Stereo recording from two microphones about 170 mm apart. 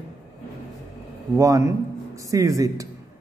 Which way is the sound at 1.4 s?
20° right (ahead or behind).